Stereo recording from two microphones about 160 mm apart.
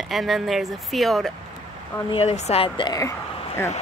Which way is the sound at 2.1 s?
40° left (ahead or behind).